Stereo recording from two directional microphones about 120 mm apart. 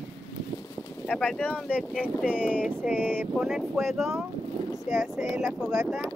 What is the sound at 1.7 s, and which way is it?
Speech, 10° right (ahead or behind).